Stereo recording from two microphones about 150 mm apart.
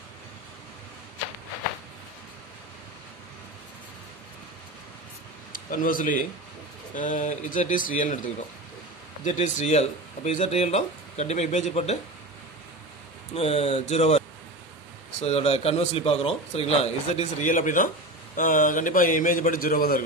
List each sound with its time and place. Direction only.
5.5 s a man's voice: 65° left (ahead or behind)
9.2 s speech: 55° left (ahead or behind)
13.3 s speech: 40° left (ahead or behind)
15.2 s a man's voice: 40° left (ahead or behind); by 20.0 s 75° left (ahead or behind)